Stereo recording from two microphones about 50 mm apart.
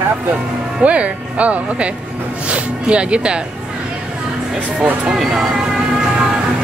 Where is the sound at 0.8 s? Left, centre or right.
Right.